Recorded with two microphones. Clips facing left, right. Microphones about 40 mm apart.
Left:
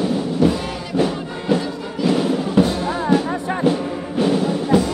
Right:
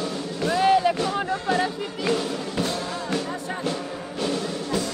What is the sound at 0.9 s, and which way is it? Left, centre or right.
Music, centre.